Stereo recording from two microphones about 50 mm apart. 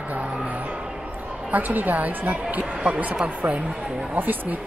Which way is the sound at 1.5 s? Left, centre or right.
Right.